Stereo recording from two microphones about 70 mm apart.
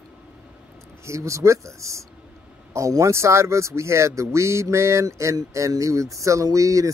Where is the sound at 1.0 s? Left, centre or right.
Right.